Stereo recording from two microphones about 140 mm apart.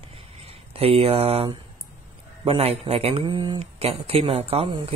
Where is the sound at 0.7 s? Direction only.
45° right (ahead or behind).